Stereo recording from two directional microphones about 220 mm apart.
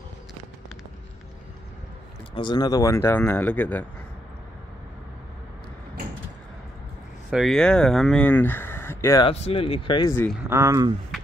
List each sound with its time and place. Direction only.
2.3 s speech: 20° left (ahead or behind)
7.2 s speech: centre (ahead or behind)
9.3 s speech: 25° left (ahead or behind)
10.5 s speech: 15° right (ahead or behind)